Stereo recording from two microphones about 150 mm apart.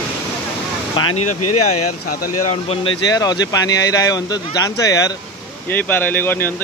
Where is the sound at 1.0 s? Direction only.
35° left (ahead or behind).